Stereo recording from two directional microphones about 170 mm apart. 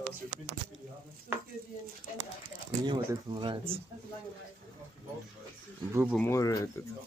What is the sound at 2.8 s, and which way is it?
Speech, 25° right (ahead or behind).